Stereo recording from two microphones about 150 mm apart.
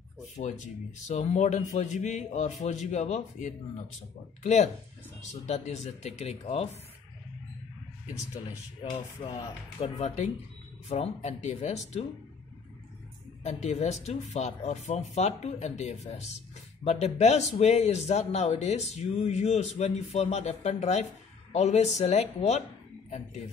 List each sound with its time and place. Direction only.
0.4 s a man's voice: 55° left (ahead or behind)
8.8 s speech: 30° left (ahead or behind)
9.8 s a man's voice: 50° left (ahead or behind)
13.4 s a man's voice: 50° left (ahead or behind)